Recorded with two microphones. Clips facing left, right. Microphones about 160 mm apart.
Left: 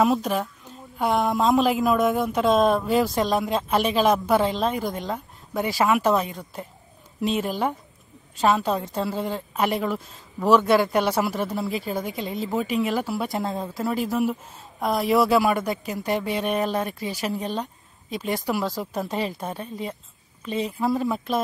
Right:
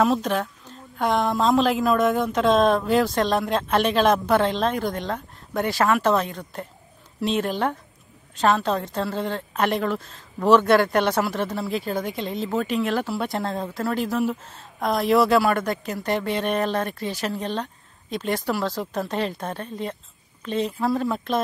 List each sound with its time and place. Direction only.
0.0 s a woman's voice: 5° left (ahead or behind)